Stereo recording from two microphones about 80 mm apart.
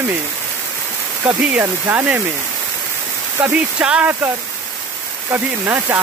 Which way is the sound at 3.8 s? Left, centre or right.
Centre.